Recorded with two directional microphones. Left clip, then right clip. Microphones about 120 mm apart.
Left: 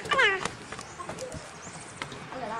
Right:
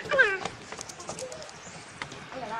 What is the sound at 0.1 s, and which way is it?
Cat, 30° left (ahead or behind).